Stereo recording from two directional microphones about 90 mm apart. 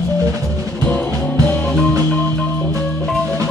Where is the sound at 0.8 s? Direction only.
10° left (ahead or behind).